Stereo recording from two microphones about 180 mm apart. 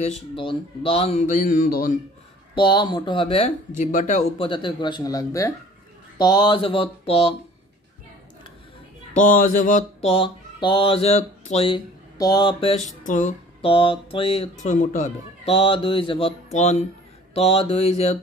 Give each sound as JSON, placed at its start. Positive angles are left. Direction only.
{"t": 0.0, "sound": "speech", "side_deg": 35}
{"t": 2.5, "sound": "speech", "side_deg": 25}
{"t": 4.4, "sound": "speech", "side_deg": 25}
{"t": 9.1, "sound": "a sound", "side_deg": 45}
{"t": 10.1, "sound": "speech", "side_deg": 30}
{"t": 13.6, "sound": "speech", "side_deg": 30}
{"t": 15.5, "sound": "speech", "side_deg": 30}